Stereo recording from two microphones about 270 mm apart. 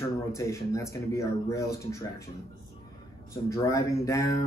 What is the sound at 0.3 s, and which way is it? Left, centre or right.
Speech, centre.